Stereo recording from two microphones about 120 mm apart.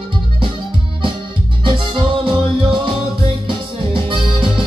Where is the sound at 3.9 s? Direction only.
45° right (ahead or behind).